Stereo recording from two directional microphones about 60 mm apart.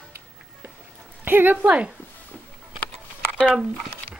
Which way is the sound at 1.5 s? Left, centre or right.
Right.